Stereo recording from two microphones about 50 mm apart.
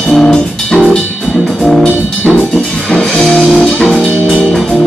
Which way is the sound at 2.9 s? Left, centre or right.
Centre.